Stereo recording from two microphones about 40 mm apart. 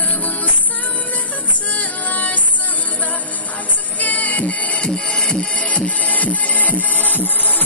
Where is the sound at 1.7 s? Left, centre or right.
Left.